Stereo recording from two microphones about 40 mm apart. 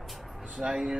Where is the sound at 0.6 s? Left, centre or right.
Centre.